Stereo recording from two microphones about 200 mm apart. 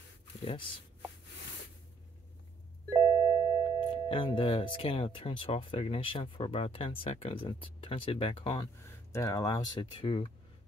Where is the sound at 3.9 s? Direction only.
25° left (ahead or behind).